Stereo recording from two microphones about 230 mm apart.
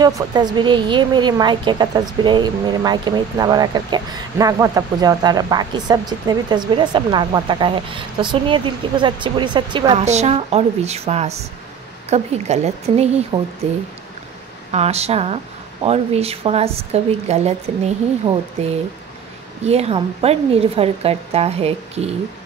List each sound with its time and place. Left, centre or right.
0.0 s a woman's voice: centre
14.7 s a woman's voice: right
19.6 s a woman's voice: right